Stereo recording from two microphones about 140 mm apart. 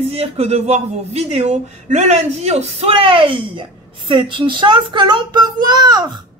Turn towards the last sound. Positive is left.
turn(degrees=-30)  # may be behind; listen again after turning